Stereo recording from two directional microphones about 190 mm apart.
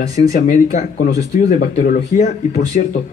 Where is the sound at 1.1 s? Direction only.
15° right (ahead or behind).